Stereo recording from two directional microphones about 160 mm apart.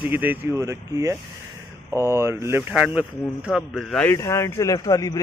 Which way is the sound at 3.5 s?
5° left (ahead or behind).